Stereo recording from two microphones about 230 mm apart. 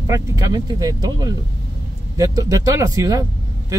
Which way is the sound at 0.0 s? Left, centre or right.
Centre.